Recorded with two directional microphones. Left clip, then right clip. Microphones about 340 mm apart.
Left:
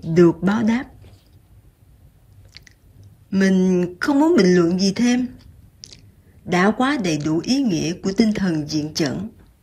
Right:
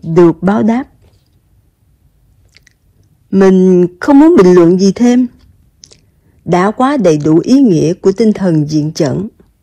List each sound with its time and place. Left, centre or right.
0.0 s speech: centre
2.5 s chewing: centre
3.3 s speech: centre
5.8 s chewing: centre
6.4 s speech: centre